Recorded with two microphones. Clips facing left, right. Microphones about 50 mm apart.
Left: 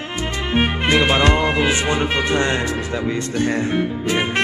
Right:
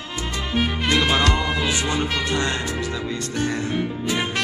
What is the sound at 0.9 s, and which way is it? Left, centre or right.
Music, left.